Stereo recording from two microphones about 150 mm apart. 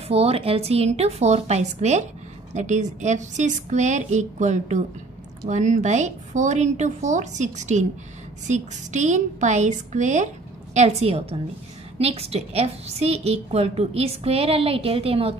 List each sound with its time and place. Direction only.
0.1 s a woman's voice: 45° right (ahead or behind)